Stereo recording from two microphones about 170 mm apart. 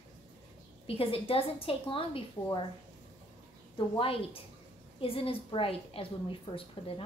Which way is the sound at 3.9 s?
35° left (ahead or behind).